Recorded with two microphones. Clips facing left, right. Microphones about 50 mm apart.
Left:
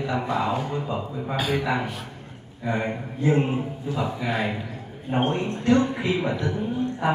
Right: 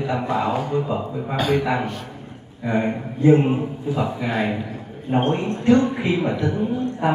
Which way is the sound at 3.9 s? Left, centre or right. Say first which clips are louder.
Right 3 dB; centre.